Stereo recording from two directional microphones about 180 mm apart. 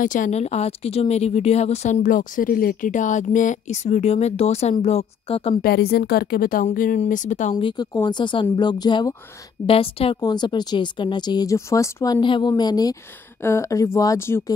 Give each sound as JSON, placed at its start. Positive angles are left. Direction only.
{"t": 0.0, "sound": "a woman's voice", "side_deg": 45}
{"t": 5.6, "sound": "a woman's voice", "side_deg": 60}
{"t": 7.5, "sound": "speech", "side_deg": 25}